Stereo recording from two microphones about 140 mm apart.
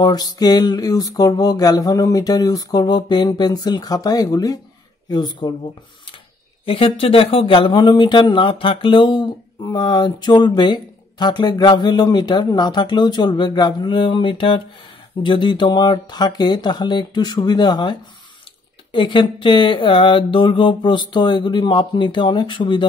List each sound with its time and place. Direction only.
0.0 s a sound: 30° left (ahead or behind)
5.1 s speech: 30° left (ahead or behind)
6.6 s speech: 40° left (ahead or behind)